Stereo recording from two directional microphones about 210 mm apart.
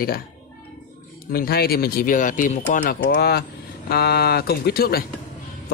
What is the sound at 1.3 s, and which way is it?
Speech, 45° left (ahead or behind).